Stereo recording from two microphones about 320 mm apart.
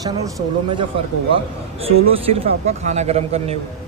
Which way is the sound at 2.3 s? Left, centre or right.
Centre.